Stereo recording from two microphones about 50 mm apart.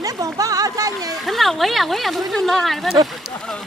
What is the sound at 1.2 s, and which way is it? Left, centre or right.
Speech, centre.